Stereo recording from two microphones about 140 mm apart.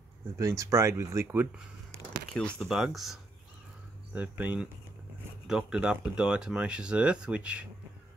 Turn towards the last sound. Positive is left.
turn(degrees=-10)  # may be behind; listen again after turning